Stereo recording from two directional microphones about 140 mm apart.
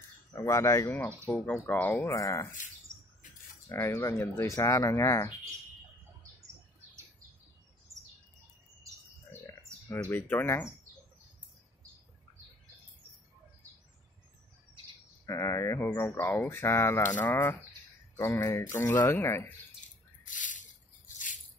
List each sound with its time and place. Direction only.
0.3 s speech: 20° left (ahead or behind)
2.1 s speech: 25° left (ahead or behind)
2.9 s bird: 20° right (ahead or behind)
3.6 s speech: 20° left (ahead or behind)
9.8 s speech: 10° left (ahead or behind)
15.2 s speech: 20° left (ahead or behind)
20.2 s drip: 65° left (ahead or behind)